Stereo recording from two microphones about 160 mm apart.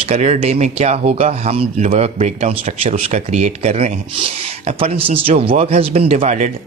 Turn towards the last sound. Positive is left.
turn(degrees=-45)  # may be behind; listen again after turning